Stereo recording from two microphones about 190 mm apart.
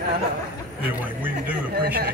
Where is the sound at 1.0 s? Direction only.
10° right (ahead or behind).